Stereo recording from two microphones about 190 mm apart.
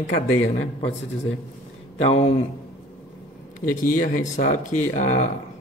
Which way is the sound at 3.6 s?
45° left (ahead or behind).